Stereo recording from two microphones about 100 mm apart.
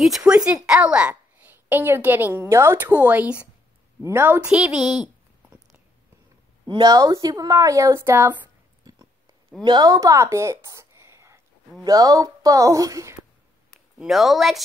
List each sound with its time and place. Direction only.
0.0 s a woman's voice: 5° right (ahead or behind)
4.0 s a child's voice: 25° right (ahead or behind)
4.5 s a woman's voice: 5° right (ahead or behind)
6.7 s a woman's voice: 40° right (ahead or behind); by 8.4 s 25° right (ahead or behind)
9.7 s a woman's voice: 45° right (ahead or behind)
9.9 s a sound: 30° right (ahead or behind)
11.8 s a woman's voice: 40° right (ahead or behind)
13.9 s a woman's voice: 5° right (ahead or behind)